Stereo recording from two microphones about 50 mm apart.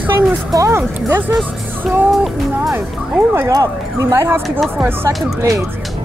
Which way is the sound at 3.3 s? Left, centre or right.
Right.